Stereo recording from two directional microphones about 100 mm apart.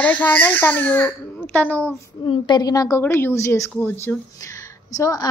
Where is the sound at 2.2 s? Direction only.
45° left (ahead or behind).